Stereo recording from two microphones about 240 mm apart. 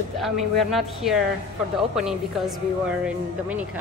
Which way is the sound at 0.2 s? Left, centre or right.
Centre.